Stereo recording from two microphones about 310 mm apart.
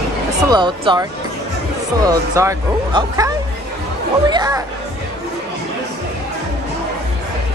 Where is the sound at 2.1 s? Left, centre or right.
Centre.